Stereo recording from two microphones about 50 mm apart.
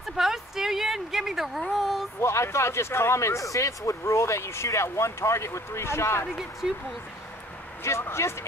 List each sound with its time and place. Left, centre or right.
0.1 s a sound: centre
2.1 s speech: left
7.8 s speech: left